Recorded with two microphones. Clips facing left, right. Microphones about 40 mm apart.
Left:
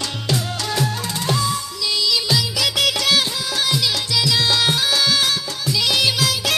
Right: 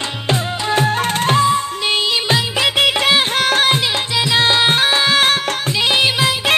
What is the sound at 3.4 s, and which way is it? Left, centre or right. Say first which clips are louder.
Music: right 7 dB; right.